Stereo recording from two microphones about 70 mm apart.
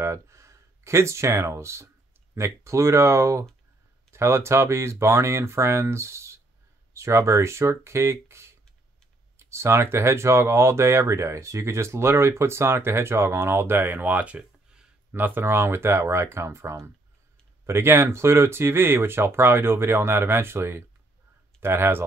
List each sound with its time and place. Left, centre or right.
0.0 s speech: right; by 14.9 s centre
15.1 s speech: right